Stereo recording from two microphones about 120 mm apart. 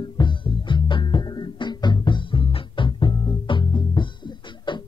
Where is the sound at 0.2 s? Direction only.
40° left (ahead or behind).